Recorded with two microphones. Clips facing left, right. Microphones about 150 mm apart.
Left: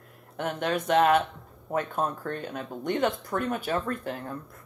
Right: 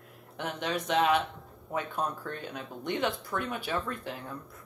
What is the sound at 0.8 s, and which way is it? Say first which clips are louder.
Speech: left 5 dB; 50° left (ahead or behind).